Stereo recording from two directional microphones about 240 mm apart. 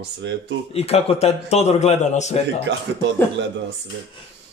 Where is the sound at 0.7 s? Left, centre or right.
Left.